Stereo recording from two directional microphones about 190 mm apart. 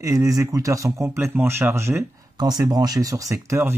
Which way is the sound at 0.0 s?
20° right (ahead or behind).